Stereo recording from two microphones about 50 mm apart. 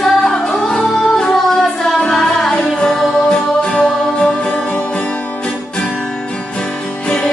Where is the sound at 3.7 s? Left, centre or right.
Left.